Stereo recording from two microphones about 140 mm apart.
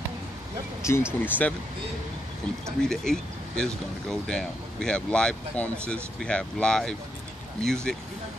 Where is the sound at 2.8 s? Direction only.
5° left (ahead or behind).